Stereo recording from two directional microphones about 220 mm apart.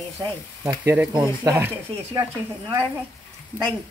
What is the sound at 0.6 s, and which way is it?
Frying, 10° right (ahead or behind).